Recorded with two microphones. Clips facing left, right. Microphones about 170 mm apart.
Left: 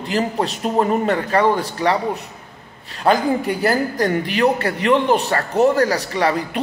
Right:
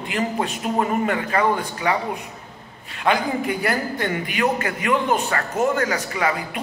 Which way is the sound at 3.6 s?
40° left (ahead or behind).